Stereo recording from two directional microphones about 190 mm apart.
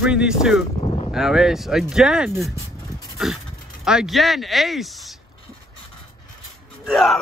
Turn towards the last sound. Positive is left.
turn(degrees=0)  # may be behind; listen again after turning